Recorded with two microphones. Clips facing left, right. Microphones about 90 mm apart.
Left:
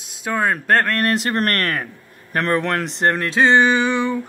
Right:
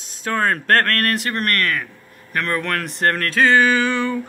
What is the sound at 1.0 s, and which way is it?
Speech, 25° left (ahead or behind).